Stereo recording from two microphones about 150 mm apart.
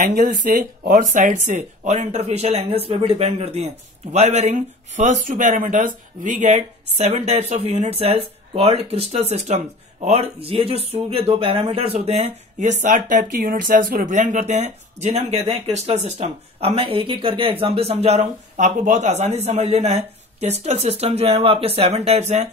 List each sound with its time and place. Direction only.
0.0 s speech: 85° right; by 22.2 s 45° right (ahead or behind)